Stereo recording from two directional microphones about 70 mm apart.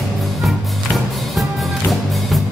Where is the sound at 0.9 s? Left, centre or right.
Centre.